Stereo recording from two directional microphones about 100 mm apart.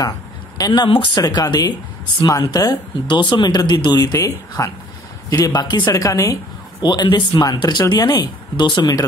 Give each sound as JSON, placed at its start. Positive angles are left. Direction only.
{"t": 0.6, "sound": "speech", "side_deg": 40}
{"t": 5.9, "sound": "speech", "side_deg": 35}
{"t": 6.8, "sound": "speech", "side_deg": 45}